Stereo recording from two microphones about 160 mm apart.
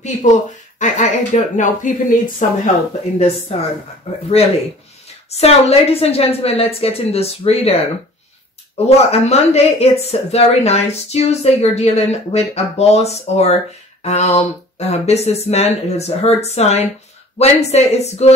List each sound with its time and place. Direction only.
0.0 s speech: 50° left (ahead or behind)
3.2 s speech: 40° left (ahead or behind)